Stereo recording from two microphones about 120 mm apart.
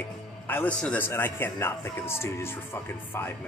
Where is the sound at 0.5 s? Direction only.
15° left (ahead or behind).